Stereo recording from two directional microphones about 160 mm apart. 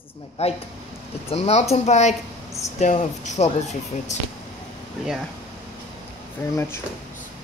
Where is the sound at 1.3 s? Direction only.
40° left (ahead or behind).